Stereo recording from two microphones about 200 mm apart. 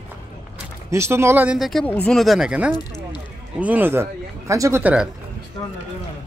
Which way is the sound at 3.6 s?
10° right (ahead or behind).